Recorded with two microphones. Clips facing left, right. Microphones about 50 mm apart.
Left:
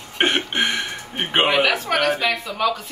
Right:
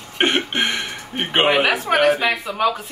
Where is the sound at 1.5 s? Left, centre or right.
Centre.